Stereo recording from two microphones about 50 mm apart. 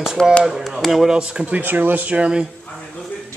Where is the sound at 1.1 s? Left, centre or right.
Centre.